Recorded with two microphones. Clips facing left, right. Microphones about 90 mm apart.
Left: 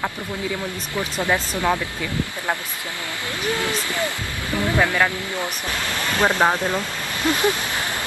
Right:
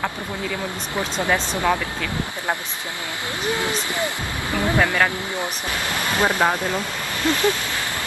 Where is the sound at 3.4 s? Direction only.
20° right (ahead or behind).